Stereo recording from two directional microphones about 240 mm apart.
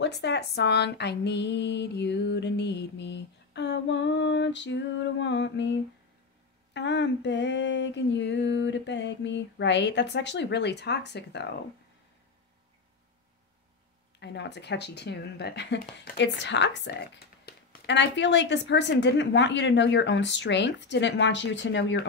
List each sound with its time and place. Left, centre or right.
0.0 s speech: left
14.2 s speech: left